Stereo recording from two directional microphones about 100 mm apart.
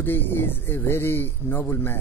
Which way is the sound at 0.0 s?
20° left (ahead or behind).